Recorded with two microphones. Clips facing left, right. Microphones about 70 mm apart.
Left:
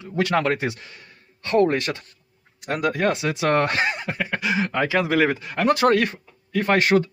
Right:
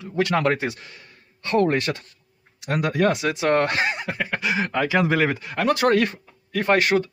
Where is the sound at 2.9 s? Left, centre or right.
Left.